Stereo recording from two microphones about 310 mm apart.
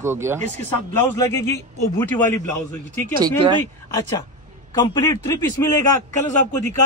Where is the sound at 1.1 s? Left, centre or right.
Centre.